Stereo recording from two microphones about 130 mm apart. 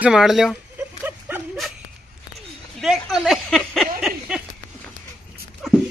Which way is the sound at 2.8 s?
5° right (ahead or behind).